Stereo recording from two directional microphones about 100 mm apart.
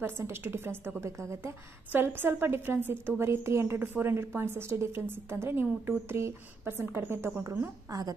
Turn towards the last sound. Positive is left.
turn(degrees=-25)  # may be behind; listen again after turning